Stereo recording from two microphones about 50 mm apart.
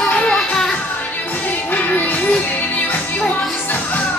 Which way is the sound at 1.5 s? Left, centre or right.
Left.